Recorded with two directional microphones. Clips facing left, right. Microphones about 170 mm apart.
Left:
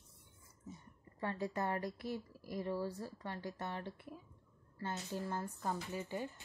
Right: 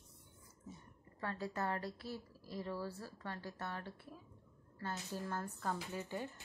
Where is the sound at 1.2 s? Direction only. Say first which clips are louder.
Left 2 dB; 15° left (ahead or behind).